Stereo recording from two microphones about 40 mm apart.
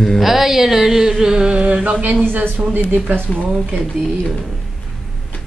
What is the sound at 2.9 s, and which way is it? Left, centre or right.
Speech, right.